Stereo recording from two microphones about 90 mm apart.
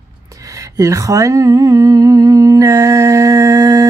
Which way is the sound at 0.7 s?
40° right (ahead or behind).